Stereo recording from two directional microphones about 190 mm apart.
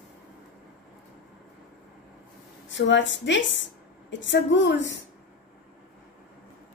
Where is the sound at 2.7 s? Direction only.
70° left (ahead or behind).